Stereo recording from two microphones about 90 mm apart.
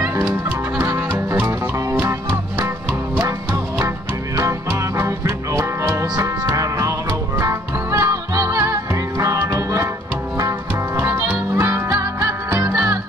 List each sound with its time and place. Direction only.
0.9 s music: 25° right (ahead or behind)
3.2 s music: 30° right (ahead or behind)
11.0 s music: 25° right (ahead or behind)